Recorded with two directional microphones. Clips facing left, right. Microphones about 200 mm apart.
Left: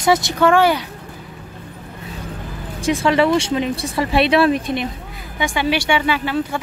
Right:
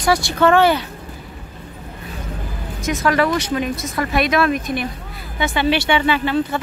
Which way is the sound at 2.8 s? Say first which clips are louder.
Left 2 dB; 30° left (ahead or behind).